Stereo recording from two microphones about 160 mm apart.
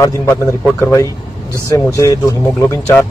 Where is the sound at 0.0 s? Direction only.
15° left (ahead or behind).